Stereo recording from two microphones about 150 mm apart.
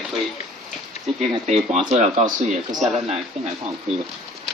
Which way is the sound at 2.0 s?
50° right (ahead or behind).